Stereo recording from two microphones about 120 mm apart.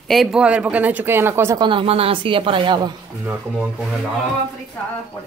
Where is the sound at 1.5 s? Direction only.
40° right (ahead or behind).